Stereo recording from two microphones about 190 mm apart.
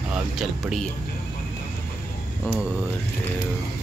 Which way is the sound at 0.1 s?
Centre (ahead or behind).